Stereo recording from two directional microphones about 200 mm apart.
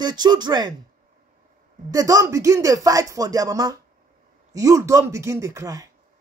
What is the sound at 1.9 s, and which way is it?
Speech, 20° right (ahead or behind).